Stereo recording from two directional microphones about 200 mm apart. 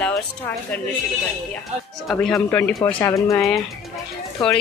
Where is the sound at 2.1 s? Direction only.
5° left (ahead or behind).